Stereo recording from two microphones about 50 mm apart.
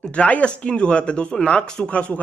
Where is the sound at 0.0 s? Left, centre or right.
Left.